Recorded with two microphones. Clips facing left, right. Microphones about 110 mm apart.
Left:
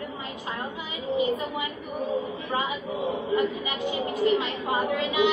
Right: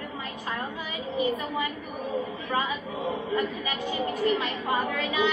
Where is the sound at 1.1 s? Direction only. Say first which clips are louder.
Left 1 dB; 20° left (ahead or behind).